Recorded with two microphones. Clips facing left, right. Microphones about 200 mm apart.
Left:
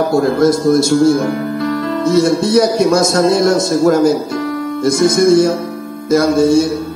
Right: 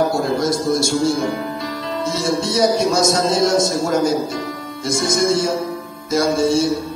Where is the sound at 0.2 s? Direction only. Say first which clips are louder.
Left 7 dB; 60° left (ahead or behind).